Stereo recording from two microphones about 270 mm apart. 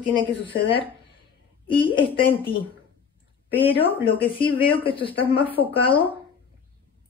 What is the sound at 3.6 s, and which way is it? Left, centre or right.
A woman's voice, centre.